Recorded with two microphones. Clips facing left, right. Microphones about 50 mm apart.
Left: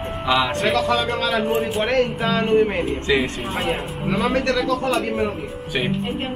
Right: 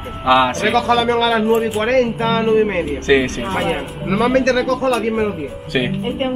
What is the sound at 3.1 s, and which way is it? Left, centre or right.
Speech, centre.